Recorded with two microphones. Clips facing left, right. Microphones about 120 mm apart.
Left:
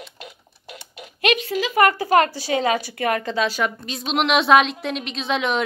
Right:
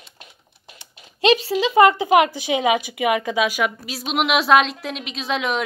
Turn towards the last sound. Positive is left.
turn(degrees=0)  # may be behind; listen again after turning